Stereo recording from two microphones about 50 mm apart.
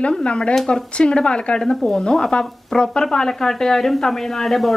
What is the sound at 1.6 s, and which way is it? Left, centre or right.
Speech, centre.